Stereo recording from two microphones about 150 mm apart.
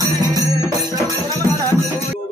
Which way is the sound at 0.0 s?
25° right (ahead or behind).